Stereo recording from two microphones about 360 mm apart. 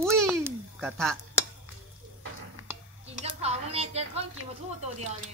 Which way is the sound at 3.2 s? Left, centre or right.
Centre.